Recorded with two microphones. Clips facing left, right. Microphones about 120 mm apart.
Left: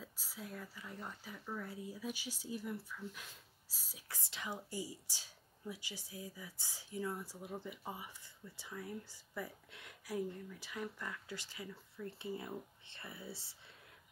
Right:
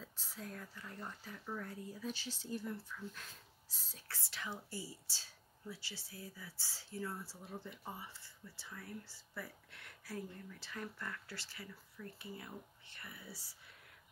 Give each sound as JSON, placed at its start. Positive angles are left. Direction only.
{"t": 0.0, "sound": "speech", "side_deg": 10}